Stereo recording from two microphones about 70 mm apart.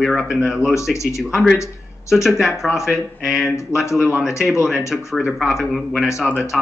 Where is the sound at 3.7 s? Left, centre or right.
Left.